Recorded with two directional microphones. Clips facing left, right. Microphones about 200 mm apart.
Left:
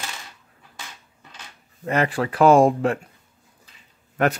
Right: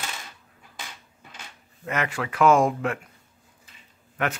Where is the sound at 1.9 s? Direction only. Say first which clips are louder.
Left 6 dB; 35° left (ahead or behind).